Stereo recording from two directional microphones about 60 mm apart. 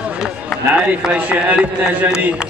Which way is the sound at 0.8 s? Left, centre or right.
Right.